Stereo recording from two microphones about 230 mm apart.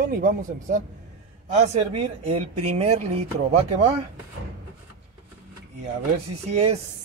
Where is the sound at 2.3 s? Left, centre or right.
Right.